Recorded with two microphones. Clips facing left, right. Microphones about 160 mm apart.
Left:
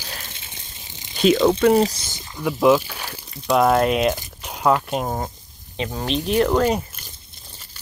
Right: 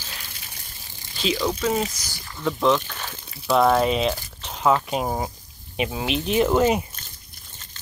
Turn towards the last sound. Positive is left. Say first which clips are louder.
# left 1 dB
turn(degrees=-10)  # may be behind; listen again after turning